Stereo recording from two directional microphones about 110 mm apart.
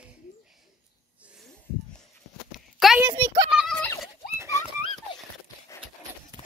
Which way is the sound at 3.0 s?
40° right (ahead or behind).